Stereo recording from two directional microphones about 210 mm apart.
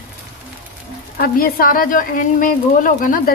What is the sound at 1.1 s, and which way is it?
A woman's voice, 45° left (ahead or behind).